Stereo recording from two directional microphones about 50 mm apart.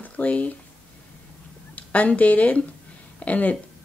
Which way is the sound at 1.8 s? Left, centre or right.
Left.